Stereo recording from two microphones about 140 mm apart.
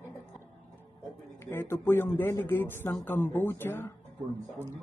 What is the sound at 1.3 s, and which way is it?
Speech, 15° left (ahead or behind).